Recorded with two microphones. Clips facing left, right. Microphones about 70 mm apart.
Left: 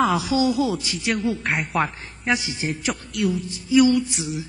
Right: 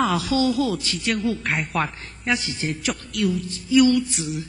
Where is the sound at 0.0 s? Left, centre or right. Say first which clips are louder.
Left 1 dB; centre.